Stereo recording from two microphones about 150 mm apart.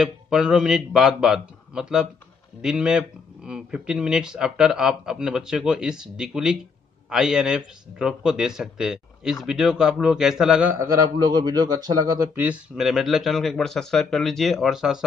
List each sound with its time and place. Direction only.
0.0 s a man's voice: 5° right (ahead or behind); by 12.3 s 25° right (ahead or behind)
12.4 s a man's voice: 5° right (ahead or behind)